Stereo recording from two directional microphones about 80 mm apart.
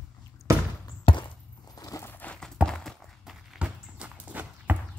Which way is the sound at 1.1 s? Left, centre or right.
Left.